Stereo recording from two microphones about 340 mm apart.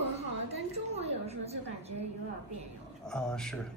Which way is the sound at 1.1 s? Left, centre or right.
Centre.